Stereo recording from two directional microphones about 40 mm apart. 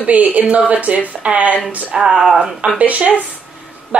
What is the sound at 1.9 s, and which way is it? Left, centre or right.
Speech, centre.